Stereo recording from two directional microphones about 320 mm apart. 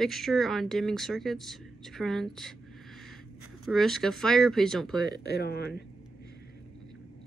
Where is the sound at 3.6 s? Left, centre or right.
Centre.